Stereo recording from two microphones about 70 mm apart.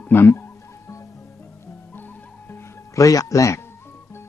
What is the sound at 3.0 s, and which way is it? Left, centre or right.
Speech, left.